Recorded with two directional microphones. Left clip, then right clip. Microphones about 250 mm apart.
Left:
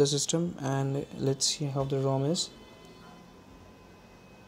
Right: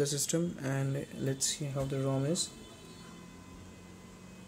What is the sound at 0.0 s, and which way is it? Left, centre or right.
Speech, centre.